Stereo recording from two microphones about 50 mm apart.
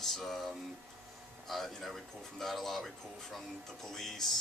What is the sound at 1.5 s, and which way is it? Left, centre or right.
Speech, centre.